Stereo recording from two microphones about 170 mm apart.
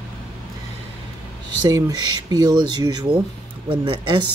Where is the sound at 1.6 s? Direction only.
20° right (ahead or behind).